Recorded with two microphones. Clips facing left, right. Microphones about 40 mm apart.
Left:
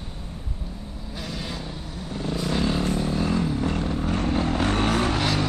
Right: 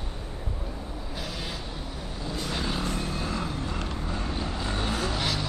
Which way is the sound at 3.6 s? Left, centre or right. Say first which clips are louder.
Left 7 dB; left.